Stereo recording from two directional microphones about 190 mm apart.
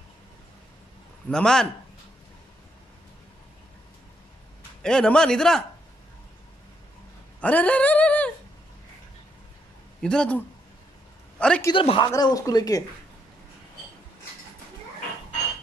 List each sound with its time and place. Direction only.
1.3 s a man's voice: 5° left (ahead or behind)
4.8 s a man's voice: 5° left (ahead or behind)
7.3 s dog: 5° left (ahead or behind)
10.0 s a man's voice: 5° left (ahead or behind)
11.7 s speech: 30° left (ahead or behind)